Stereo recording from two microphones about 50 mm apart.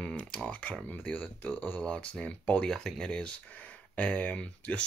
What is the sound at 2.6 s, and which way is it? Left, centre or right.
Speech, centre.